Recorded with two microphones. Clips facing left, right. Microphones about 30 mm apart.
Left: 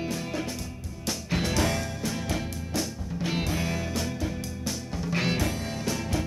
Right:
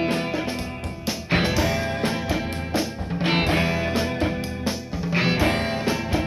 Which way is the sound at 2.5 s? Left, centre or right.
Right.